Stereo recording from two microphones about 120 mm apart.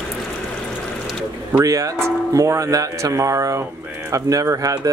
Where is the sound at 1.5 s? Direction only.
25° right (ahead or behind).